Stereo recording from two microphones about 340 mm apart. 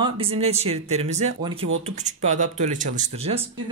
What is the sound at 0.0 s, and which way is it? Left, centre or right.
Speech, centre.